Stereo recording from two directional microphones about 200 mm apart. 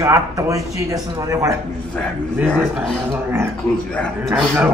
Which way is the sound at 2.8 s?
5° left (ahead or behind).